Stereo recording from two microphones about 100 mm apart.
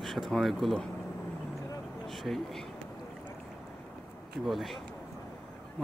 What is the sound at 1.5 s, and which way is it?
Vehicle, 30° left (ahead or behind).